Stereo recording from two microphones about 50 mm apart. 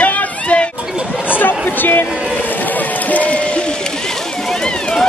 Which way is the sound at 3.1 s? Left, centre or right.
Left.